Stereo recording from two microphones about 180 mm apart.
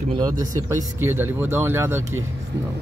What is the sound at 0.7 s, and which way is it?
Speech, 15° right (ahead or behind).